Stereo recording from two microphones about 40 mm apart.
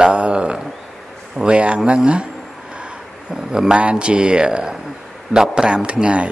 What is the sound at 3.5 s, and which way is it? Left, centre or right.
Speech, centre.